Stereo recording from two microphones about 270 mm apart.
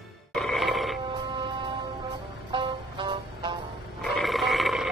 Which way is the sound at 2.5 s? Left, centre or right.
Centre.